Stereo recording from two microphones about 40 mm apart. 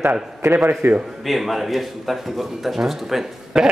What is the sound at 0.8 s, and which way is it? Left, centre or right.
Speech, right.